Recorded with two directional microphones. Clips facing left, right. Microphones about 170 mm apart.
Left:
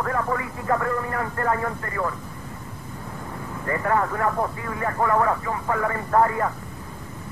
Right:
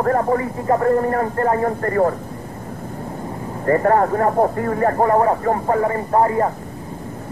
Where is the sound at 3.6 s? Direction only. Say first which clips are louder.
Right 8 dB; 40° right (ahead or behind).